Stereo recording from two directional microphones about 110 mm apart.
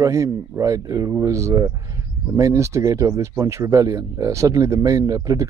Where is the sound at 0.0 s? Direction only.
30° right (ahead or behind).